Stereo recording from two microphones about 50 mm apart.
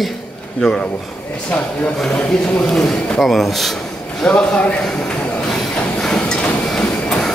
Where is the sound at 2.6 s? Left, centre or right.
Centre.